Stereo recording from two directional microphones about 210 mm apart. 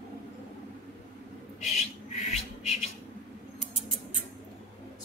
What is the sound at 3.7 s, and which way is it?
Rodents, 25° left (ahead or behind).